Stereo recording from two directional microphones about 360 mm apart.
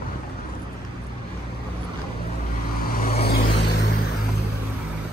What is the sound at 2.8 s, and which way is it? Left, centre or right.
Vehicle, left.